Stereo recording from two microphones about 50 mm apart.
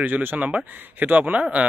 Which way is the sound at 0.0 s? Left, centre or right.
Right.